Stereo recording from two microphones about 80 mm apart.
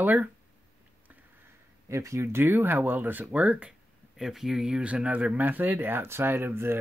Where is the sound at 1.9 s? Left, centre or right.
Right; by 3.7 s centre.